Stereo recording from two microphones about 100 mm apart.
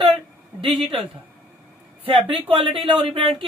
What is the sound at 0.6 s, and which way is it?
Speech, 65° right (ahead or behind).